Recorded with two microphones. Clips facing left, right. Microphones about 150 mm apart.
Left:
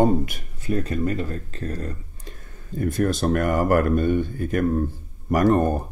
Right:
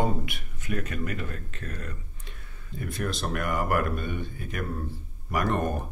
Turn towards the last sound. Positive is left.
turn(degrees=35)  # may be behind; listen again after turning